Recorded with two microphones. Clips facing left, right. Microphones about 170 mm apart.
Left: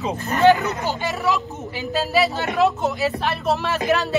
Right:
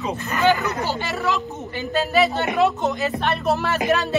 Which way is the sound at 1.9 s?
Centre (ahead or behind).